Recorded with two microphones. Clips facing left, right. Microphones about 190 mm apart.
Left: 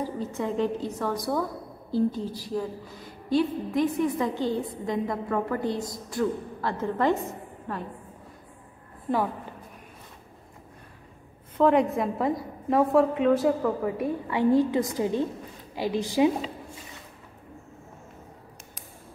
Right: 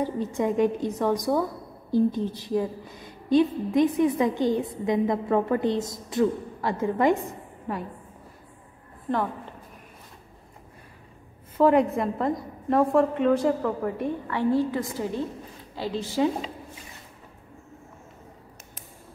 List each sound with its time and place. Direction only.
0.0 s a woman's voice: 15° right (ahead or behind)
11.5 s a woman's voice: centre (ahead or behind)
14.2 s a woman's voice: 15° left (ahead or behind)